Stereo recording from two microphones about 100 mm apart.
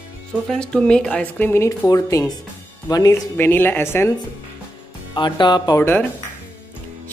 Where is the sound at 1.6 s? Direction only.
30° left (ahead or behind).